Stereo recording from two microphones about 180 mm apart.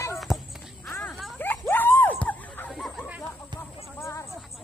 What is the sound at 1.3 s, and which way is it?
Dog, 10° left (ahead or behind).